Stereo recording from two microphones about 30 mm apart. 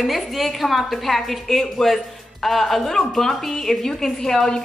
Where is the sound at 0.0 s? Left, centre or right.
Centre.